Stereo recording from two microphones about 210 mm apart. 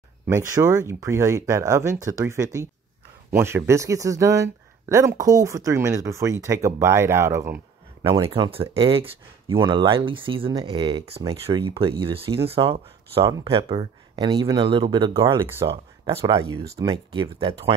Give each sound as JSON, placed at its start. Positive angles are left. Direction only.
{"t": 0.3, "sound": "speech", "side_deg": -15}
{"t": 8.0, "sound": "speech", "side_deg": -25}
{"t": 15.4, "sound": "speech", "side_deg": -10}
{"t": 16.2, "sound": "speech", "side_deg": -25}